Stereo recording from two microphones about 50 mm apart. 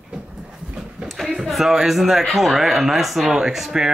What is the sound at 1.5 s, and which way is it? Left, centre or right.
Speech, centre.